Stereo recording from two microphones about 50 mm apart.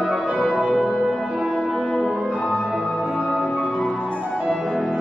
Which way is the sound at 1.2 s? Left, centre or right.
Centre.